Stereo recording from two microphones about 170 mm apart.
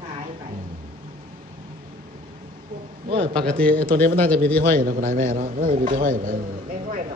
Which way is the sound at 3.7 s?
55° right (ahead or behind).